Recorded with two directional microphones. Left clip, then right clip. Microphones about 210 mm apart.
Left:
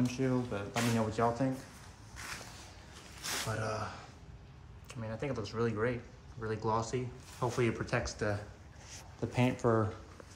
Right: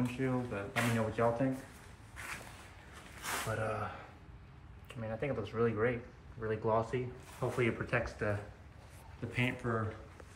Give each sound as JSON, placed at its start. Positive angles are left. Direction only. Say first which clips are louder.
{"t": 0.0, "sound": "speech", "louder": "left 2 dB", "side_deg": 10}
{"t": 2.1, "sound": "a sound", "louder": "even", "side_deg": 0}
{"t": 3.2, "sound": "speech", "louder": "even", "side_deg": 0}
{"t": 9.3, "sound": "speech", "louder": "left 3 dB", "side_deg": 15}